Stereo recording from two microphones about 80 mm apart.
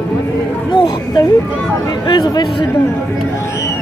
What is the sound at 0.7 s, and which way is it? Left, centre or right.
Speech, left.